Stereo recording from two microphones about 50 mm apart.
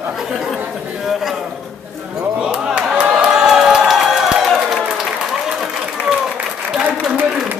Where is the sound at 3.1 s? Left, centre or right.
Centre.